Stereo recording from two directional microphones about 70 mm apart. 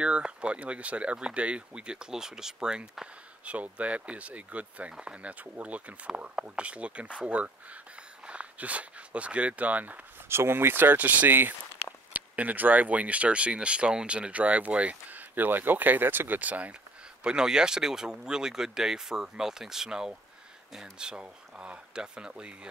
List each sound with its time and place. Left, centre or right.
0.0 s speech: centre
10.2 s speech: right
17.2 s speech: centre